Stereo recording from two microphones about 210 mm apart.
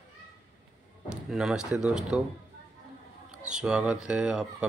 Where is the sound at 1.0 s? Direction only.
5° right (ahead or behind).